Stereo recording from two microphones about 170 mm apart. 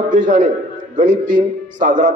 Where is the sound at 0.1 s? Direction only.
50° right (ahead or behind).